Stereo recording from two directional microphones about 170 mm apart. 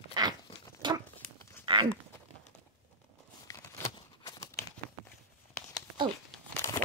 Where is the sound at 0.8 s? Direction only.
25° right (ahead or behind).